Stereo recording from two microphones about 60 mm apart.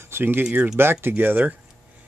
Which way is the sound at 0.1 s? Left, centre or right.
Right.